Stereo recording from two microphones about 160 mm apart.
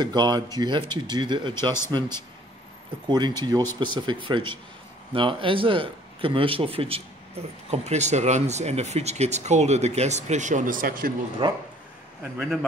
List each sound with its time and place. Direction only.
0.0 s a man's voice: 25° right (ahead or behind); by 11.1 s 65° right (ahead or behind)
11.4 s speech: 30° right (ahead or behind)